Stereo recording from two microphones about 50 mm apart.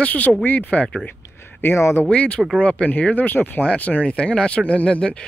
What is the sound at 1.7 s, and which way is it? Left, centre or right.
Speech, left.